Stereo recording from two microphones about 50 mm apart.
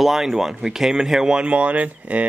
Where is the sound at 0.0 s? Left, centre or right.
Centre.